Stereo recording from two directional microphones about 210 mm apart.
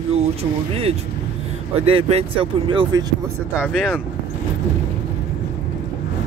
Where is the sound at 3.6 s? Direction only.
5° right (ahead or behind).